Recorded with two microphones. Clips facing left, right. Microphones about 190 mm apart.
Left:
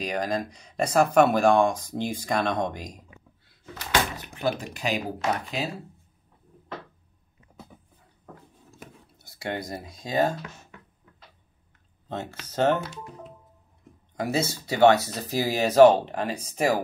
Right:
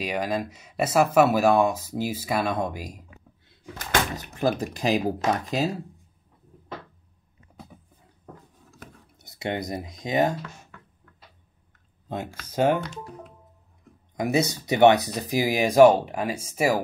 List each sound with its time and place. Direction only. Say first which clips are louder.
0.0 s speech: right 1 dB; 5° right (ahead or behind)
4.3 s speech: right 3 dB; 40° right (ahead or behind)
9.2 s speech: right 3 dB; 20° right (ahead or behind)
12.1 s speech: right 1 dB; 10° right (ahead or behind)
14.1 s speech: right 3 dB; 15° right (ahead or behind)